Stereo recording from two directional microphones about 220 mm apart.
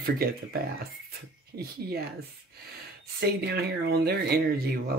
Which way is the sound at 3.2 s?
45° right (ahead or behind).